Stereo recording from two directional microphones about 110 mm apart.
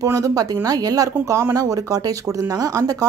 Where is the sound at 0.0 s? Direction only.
30° right (ahead or behind).